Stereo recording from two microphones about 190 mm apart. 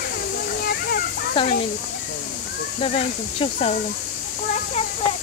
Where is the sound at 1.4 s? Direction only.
25° left (ahead or behind).